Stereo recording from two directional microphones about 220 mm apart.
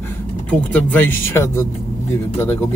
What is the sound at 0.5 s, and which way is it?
Speech, 5° left (ahead or behind).